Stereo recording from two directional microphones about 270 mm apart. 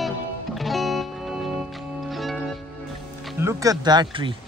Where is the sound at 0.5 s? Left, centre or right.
Centre.